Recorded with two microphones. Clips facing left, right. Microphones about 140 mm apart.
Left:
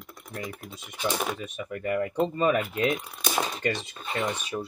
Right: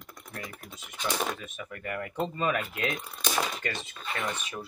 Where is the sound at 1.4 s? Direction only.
25° left (ahead or behind).